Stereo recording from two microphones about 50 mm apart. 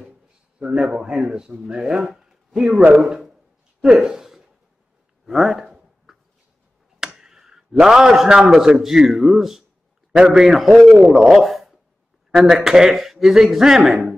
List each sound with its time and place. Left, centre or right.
0.6 s speech: centre
2.0 s a sound: centre
2.9 s speech: centre
5.3 s a sound: centre
7.2 s a man's voice: centre
11.1 s speech: centre